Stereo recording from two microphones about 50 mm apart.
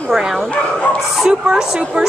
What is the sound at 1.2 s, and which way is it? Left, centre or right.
Speech, centre.